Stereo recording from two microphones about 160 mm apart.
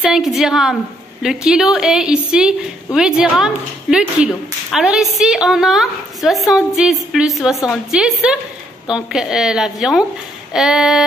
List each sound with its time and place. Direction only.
0.0 s a woman's voice: 5° right (ahead or behind)